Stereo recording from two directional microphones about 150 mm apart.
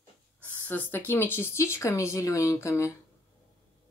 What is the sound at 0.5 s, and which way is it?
Speech, 10° left (ahead or behind).